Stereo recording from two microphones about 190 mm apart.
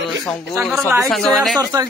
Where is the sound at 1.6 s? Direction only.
20° right (ahead or behind).